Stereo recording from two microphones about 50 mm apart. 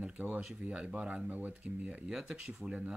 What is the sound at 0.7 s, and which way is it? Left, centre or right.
Speech, right.